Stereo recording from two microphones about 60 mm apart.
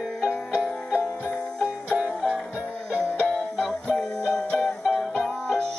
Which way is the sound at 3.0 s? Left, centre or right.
Centre.